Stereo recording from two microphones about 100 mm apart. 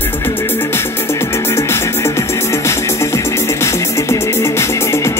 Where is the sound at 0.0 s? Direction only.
20° left (ahead or behind).